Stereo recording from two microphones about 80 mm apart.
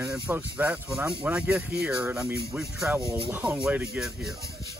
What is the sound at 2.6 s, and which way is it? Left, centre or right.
Speech, centre.